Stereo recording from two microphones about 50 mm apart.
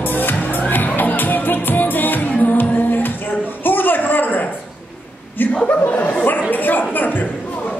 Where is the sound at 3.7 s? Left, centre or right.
Left.